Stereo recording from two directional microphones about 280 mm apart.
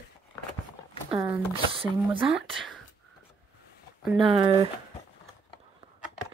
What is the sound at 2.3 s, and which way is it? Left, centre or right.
Speech, centre.